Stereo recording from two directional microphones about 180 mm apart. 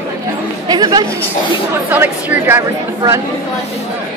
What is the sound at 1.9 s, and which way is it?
A woman's voice, 10° right (ahead or behind).